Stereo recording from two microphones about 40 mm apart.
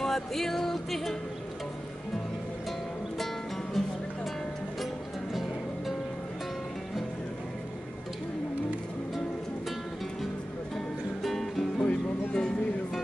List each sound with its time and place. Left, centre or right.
0.0 s music: centre
3.8 s music: centre
11.2 s music: centre
11.8 s music: left